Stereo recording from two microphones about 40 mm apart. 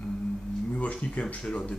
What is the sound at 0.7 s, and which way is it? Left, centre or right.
Speech, left.